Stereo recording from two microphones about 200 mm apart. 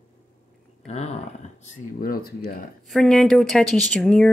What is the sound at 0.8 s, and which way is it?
Speech, 35° left (ahead or behind).